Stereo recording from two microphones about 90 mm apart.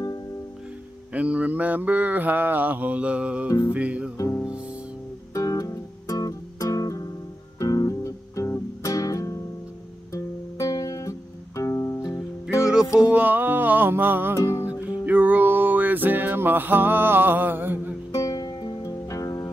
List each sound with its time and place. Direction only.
1.1 s mantra: 15° right (ahead or behind)
4.2 s music: 35° left (ahead or behind)
12.5 s music: 5° right (ahead or behind); by 17.9 s 20° right (ahead or behind)
18.1 s music: 40° left (ahead or behind)